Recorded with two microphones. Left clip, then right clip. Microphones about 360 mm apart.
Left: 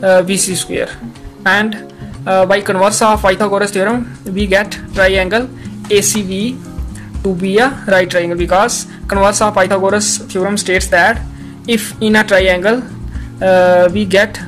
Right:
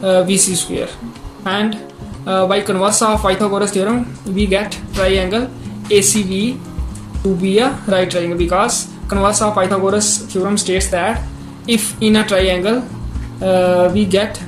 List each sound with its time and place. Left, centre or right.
0.0 s speech: left